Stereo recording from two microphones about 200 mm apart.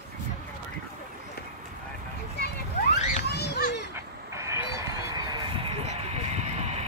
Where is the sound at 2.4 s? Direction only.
50° left (ahead or behind).